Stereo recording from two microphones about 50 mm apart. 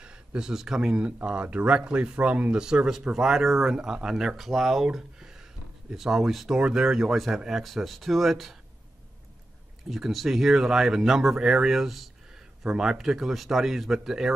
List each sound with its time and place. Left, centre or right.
0.0 s speech: centre
1.0 s speech: right
2.6 s speech: centre
9.8 s speech: centre
12.6 s speech: centre